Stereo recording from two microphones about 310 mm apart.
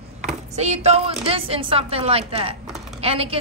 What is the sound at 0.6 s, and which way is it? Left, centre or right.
A woman's voice, right.